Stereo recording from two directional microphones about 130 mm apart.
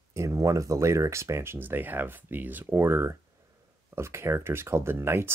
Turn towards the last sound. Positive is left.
turn(degrees=-20)  # may be behind; listen again after turning